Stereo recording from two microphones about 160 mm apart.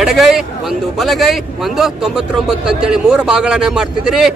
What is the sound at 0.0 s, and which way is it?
A man's voice, centre (ahead or behind).